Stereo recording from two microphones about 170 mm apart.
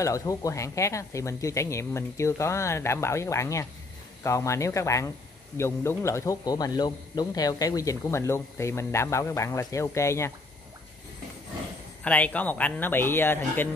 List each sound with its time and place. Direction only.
0.0 s speech: 20° left (ahead or behind)
12.0 s speech: 10° left (ahead or behind)